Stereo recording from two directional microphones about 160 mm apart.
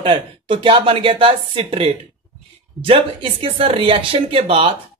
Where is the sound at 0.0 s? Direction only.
30° right (ahead or behind).